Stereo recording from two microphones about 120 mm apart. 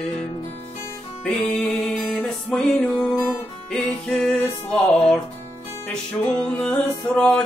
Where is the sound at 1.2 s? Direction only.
10° left (ahead or behind).